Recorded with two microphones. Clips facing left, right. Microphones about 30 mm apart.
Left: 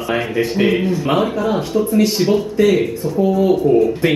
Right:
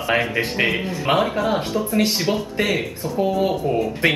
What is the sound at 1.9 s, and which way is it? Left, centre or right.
Speech, right.